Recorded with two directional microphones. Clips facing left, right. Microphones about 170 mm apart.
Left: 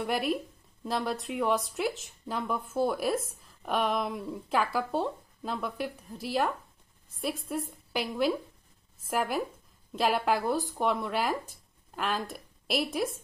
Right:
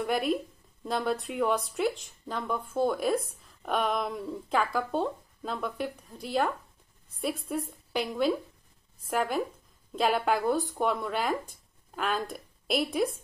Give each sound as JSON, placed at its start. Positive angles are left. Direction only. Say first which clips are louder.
{"t": 0.0, "sound": "speech", "louder": "right 2 dB", "side_deg": 0}